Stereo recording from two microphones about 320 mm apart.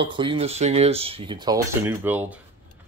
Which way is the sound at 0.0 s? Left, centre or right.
Centre.